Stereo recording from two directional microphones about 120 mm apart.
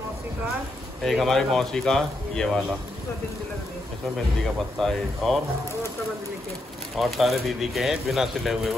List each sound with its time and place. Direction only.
1.0 s speech: centre (ahead or behind)
4.7 s speech: 5° left (ahead or behind)
7.0 s speech: centre (ahead or behind)